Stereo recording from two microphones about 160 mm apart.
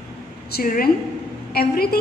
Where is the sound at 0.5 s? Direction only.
65° left (ahead or behind).